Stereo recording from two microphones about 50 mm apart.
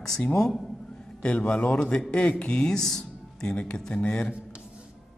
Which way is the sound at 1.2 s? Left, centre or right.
Left.